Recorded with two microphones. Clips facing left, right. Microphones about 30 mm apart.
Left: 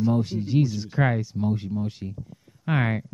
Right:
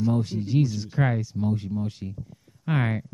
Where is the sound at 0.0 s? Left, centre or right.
Centre.